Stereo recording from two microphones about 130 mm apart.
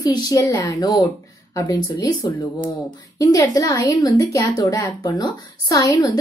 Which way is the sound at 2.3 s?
35° left (ahead or behind).